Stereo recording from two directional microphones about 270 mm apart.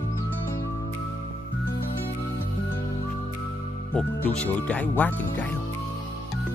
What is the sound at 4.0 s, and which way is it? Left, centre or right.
Speech, centre.